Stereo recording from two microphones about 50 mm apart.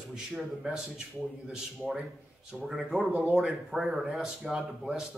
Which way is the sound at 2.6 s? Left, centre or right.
Centre.